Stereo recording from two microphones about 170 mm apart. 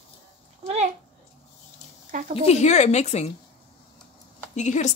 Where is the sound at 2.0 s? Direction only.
55° right (ahead or behind).